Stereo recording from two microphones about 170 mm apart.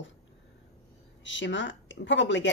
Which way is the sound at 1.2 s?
90° left.